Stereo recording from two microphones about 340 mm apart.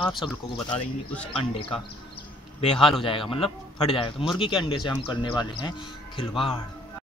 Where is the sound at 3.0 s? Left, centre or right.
Centre.